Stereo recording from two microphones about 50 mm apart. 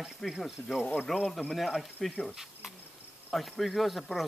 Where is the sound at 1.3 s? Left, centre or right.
Centre.